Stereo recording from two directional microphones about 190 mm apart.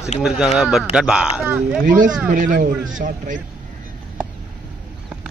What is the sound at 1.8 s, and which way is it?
A man's voice, 45° right (ahead or behind).